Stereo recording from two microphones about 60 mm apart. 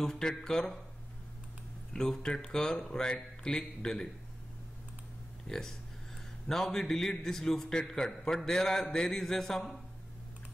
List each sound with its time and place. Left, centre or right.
0.0 s a man's voice: centre
2.0 s a man's voice: centre
5.5 s a man's voice: centre